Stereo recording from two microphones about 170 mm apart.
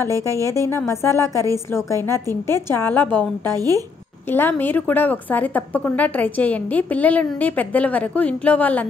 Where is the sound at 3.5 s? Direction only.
20° right (ahead or behind).